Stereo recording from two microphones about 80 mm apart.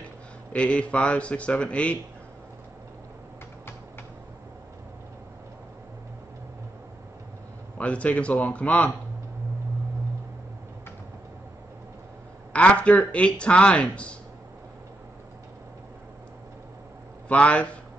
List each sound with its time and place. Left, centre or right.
0.5 s speech: centre
7.7 s speech: centre
12.5 s speech: centre
17.3 s speech: centre